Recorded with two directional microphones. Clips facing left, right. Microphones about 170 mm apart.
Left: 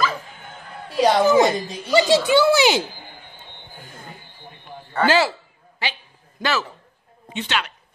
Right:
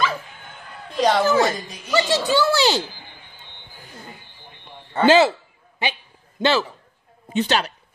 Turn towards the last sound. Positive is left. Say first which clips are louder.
# right 5 dB
turn(degrees=-40)  # may be behind; listen again after turning